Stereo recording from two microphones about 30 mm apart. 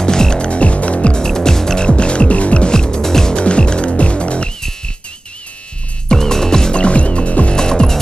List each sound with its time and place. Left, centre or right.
0.0 s music: left
0.5 s music: left
1.1 s music: left
1.8 s music: left
2.7 s music: left
3.3 s music: left
6.0 s music: centre
6.7 s music: left
7.5 s music: left